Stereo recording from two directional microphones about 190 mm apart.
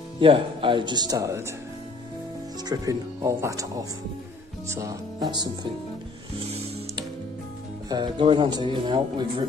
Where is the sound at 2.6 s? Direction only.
20° right (ahead or behind).